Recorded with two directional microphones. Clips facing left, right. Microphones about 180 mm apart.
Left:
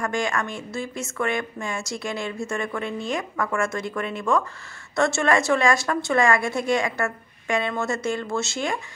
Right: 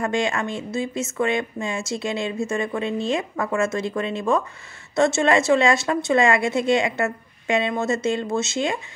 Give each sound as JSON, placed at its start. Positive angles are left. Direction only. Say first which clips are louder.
{"t": 0.0, "sound": "a woman's voice", "louder": "right 3 dB", "side_deg": -25}